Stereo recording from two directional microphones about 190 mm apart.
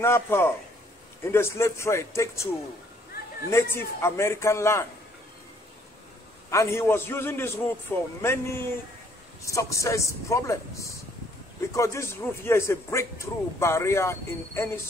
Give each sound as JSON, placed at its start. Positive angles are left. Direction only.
{"t": 0.0, "sound": "speech", "side_deg": 15}
{"t": 6.5, "sound": "speech", "side_deg": 15}